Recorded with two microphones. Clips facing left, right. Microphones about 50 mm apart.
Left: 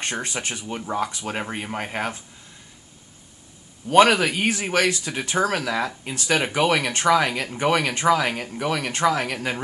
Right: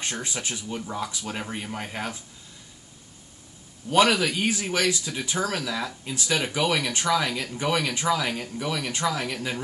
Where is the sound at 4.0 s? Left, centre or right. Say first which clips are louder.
Left 5 dB; left.